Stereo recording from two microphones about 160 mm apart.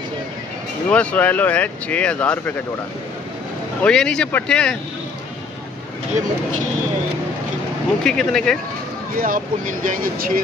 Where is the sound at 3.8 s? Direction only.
5° left (ahead or behind).